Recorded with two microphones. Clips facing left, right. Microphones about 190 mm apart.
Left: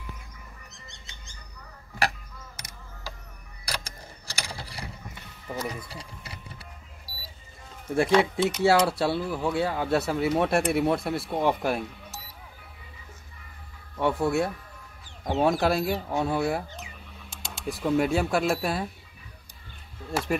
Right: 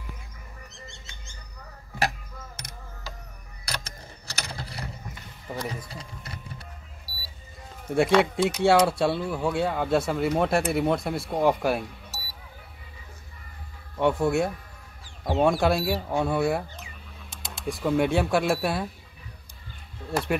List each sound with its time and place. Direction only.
3.6 s a sound: 10° left (ahead or behind)
4.5 s mechanisms: 10° left (ahead or behind)
5.9 s speech: 10° left (ahead or behind)
7.1 s a sound: 45° left (ahead or behind)
8.0 s speech: centre (ahead or behind)
13.9 s speech: centre (ahead or behind)
20.1 s speech: 5° right (ahead or behind)